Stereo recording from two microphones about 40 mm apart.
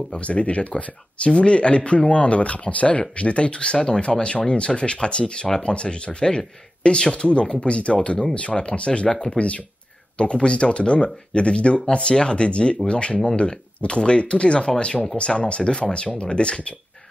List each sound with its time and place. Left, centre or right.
0.2 s speech: left